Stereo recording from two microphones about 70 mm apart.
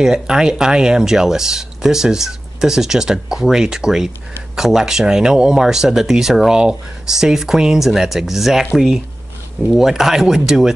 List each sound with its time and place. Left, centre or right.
0.0 s speech: centre